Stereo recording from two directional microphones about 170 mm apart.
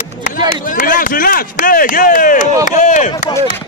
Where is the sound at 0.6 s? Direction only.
50° left (ahead or behind).